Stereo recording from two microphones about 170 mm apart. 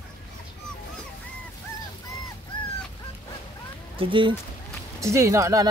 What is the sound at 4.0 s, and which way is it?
Speech, 30° right (ahead or behind).